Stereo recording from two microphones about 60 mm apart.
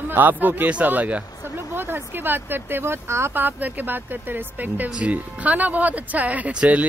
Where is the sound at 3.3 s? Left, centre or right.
Right.